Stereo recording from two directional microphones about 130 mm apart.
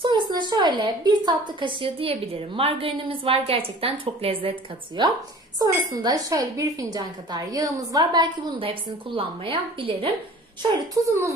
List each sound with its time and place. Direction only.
0.0 s a woman's voice: 35° right (ahead or behind)
5.6 s speech: 30° right (ahead or behind)